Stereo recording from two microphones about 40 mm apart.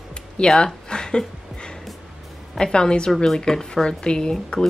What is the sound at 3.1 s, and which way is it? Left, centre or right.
Speech, centre.